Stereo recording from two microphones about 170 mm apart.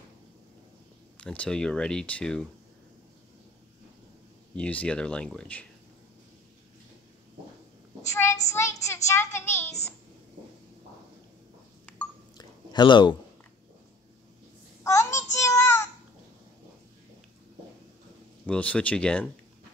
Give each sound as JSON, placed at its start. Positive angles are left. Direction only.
{"t": 1.1, "sound": "speech", "side_deg": 5}
{"t": 4.6, "sound": "speech", "side_deg": 5}
{"t": 8.1, "sound": "child singing", "side_deg": 15}
{"t": 8.8, "sound": "a child's voice", "side_deg": 15}
{"t": 12.4, "sound": "a sound", "side_deg": 25}
{"t": 14.8, "sound": "child singing", "side_deg": 15}
{"t": 18.5, "sound": "a child's voice", "side_deg": 5}